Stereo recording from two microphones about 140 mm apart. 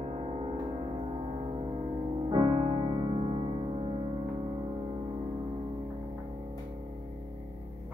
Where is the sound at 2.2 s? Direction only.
35° right (ahead or behind).